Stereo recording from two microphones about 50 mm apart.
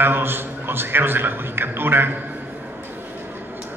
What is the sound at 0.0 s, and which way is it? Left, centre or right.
A man's voice, right.